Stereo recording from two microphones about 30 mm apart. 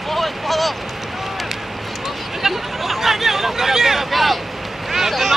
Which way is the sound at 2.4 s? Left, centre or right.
Centre.